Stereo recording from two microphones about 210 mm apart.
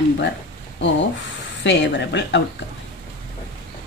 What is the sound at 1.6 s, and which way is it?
Speech, 55° left (ahead or behind).